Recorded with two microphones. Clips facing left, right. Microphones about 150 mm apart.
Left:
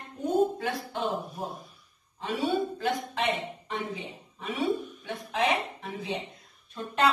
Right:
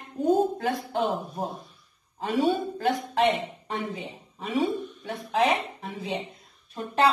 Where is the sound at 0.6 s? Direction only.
45° right (ahead or behind).